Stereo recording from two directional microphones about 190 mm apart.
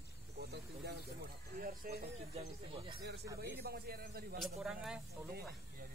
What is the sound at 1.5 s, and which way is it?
Speech, 50° right (ahead or behind).